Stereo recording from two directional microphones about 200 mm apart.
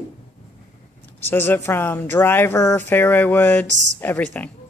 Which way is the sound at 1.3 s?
10° left (ahead or behind).